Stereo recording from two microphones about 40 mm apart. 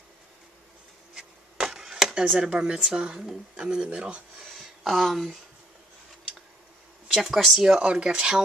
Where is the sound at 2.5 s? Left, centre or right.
Right.